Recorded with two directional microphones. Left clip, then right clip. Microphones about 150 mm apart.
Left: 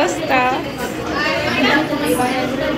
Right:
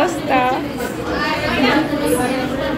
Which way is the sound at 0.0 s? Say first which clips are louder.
Even; 10° right (ahead or behind).